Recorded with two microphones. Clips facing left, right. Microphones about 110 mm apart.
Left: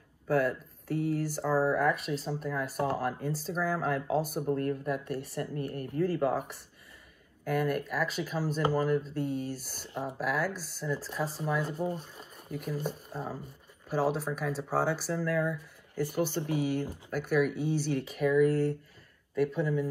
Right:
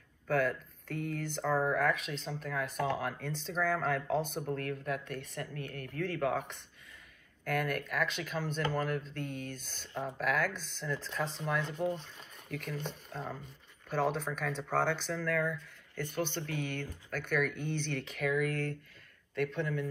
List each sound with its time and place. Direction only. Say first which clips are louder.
0.3 s speech: left 3 dB; 5° left (ahead or behind)
0.8 s speech: left 7 dB; 60° right (ahead or behind)
1.2 s speech: even; 10° left (ahead or behind)